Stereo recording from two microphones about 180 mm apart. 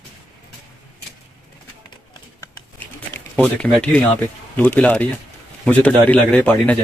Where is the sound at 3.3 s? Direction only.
10° left (ahead or behind).